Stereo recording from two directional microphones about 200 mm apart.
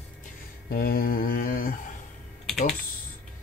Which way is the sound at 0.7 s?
50° left (ahead or behind).